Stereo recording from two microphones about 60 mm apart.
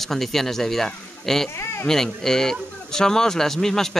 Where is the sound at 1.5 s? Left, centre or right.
Left.